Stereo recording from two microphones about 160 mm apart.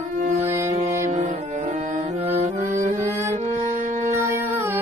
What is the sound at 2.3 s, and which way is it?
Music, 45° right (ahead or behind).